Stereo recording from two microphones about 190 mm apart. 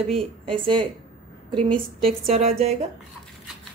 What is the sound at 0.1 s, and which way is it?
A woman's voice, 30° right (ahead or behind).